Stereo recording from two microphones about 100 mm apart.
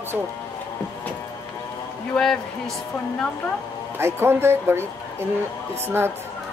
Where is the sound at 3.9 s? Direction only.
25° right (ahead or behind).